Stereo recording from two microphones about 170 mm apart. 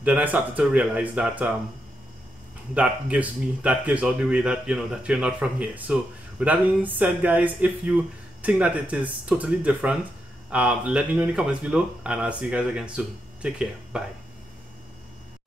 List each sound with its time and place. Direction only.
0.0 s speech: 10° right (ahead or behind)
2.7 s speech: 10° right (ahead or behind)